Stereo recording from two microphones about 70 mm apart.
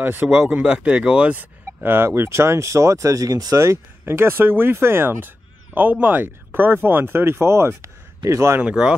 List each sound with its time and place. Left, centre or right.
0.0 s speech: right
0.6 s speech: centre
1.3 s speech: right
3.5 s speech: right
8.5 s speech: centre